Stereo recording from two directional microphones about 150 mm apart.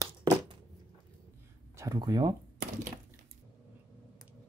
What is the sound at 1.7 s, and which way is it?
Speech, 25° right (ahead or behind).